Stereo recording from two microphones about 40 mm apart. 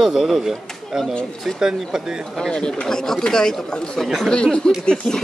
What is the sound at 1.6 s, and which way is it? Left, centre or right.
Speech, centre.